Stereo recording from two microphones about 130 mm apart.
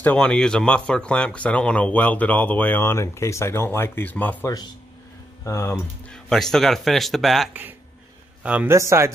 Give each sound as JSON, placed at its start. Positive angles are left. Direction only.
{"t": 0.0, "sound": "speech", "side_deg": 10}
{"t": 6.0, "sound": "a man's voice", "side_deg": 5}
{"t": 8.7, "sound": "speech", "side_deg": -20}